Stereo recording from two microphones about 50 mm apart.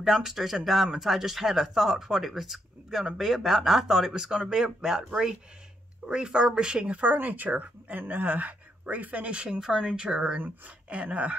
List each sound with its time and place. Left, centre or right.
0.0 s speech: centre
6.0 s speech: centre
7.0 s speech: right; by 10.3 s centre
10.3 s speech: right